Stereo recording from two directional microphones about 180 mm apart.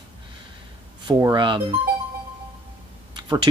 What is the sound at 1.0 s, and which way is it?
Speech, 20° right (ahead or behind).